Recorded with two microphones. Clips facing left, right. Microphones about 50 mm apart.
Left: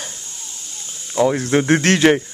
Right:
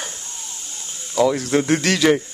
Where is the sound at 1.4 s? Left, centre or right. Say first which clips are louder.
Left 3 dB; left.